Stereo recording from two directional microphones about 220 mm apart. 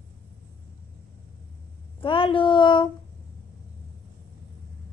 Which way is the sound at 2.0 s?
25° left (ahead or behind).